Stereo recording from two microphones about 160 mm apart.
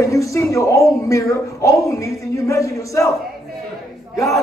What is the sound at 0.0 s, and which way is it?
A woman's voice, 20° left (ahead or behind).